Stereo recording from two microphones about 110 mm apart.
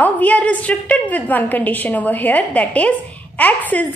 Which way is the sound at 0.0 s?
15° left (ahead or behind).